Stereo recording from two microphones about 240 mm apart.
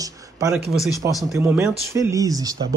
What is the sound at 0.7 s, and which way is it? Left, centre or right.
Speech, centre.